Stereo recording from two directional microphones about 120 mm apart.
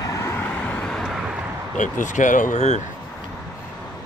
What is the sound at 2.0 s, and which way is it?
Speech, 90° left.